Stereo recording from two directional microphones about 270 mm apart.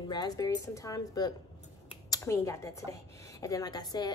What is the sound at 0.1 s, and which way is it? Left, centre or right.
A woman's voice, centre.